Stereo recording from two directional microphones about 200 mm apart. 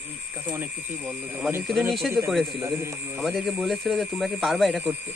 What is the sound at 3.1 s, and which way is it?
Speech, centre (ahead or behind).